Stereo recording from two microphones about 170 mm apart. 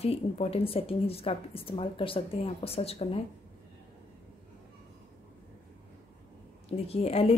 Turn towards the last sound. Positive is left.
turn(degrees=35)  # may be behind; listen again after turning